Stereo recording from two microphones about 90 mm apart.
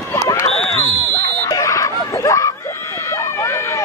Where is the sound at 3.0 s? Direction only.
35° left (ahead or behind).